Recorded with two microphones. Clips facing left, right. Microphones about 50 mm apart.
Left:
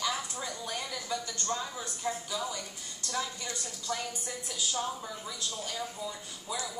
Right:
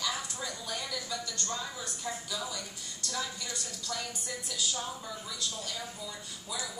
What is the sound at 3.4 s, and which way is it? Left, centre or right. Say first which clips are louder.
Speech: left 2 dB; left.